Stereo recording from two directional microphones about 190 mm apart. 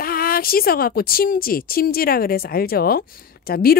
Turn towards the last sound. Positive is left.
turn(degrees=50)  # may be behind; listen again after turning